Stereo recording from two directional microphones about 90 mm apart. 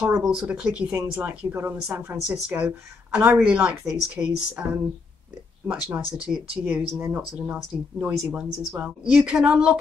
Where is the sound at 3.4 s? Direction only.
10° right (ahead or behind).